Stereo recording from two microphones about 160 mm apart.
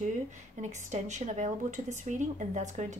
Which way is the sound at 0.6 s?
45° right (ahead or behind).